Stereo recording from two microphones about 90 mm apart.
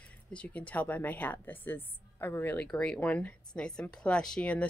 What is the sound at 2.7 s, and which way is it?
Speech, 10° left (ahead or behind).